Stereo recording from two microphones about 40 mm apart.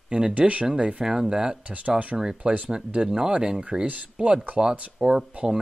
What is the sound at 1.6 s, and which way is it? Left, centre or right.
Speech, right.